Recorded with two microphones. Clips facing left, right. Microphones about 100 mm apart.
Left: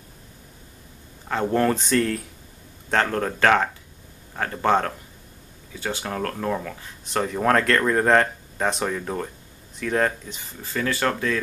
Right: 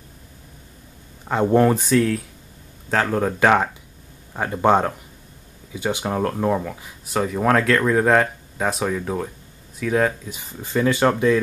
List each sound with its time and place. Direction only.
1.3 s speech: 15° right (ahead or behind)
1.8 s speech: 5° right (ahead or behind)
10.4 s speech: 20° right (ahead or behind)